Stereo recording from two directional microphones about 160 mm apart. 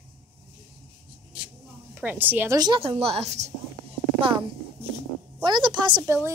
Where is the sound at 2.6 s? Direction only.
30° right (ahead or behind).